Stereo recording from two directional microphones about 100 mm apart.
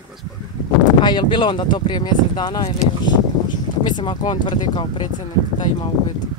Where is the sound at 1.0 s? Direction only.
50° left (ahead or behind).